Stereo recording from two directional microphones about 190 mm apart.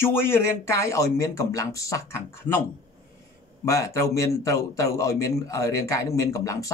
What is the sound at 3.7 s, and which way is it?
A man's voice, 15° left (ahead or behind).